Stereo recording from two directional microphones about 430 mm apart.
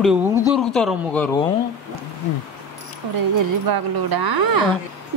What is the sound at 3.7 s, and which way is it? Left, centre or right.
Speech, right.